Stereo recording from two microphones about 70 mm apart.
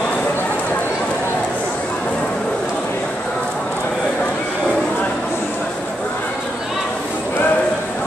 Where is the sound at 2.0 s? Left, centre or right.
Centre.